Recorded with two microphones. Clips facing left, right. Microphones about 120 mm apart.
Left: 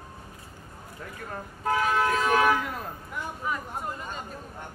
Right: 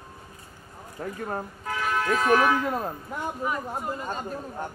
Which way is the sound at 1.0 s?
40° right (ahead or behind).